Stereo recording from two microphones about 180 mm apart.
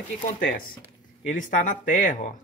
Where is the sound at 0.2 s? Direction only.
45° left (ahead or behind).